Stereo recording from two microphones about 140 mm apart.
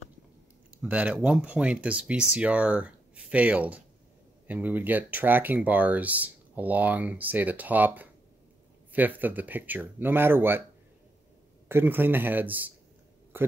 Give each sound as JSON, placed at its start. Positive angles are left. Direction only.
{"t": 0.8, "sound": "speech", "side_deg": -10}
{"t": 11.7, "sound": "speech", "side_deg": -15}